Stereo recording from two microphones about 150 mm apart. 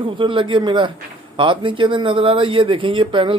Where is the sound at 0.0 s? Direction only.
35° right (ahead or behind).